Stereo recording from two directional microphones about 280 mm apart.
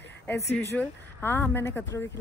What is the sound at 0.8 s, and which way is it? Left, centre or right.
Speech, centre.